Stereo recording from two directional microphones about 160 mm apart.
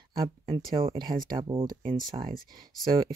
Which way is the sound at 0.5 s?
35° right (ahead or behind).